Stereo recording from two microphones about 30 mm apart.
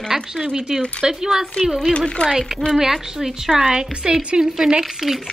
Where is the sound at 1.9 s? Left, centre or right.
Left.